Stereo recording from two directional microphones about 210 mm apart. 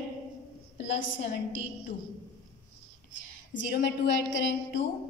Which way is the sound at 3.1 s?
60° left (ahead or behind).